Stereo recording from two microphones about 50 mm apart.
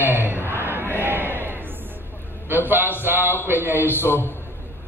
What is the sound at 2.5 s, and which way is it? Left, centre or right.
Speech, right.